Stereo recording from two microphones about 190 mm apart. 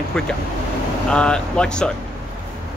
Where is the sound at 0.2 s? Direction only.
5° left (ahead or behind).